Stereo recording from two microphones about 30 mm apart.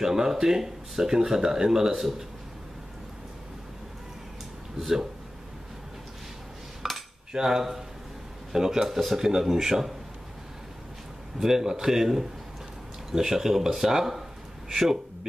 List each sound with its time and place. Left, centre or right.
0.0 s speech: centre
2.0 s speech: centre
6.8 s cutlery: centre
7.3 s speech: centre
11.3 s a man's voice: centre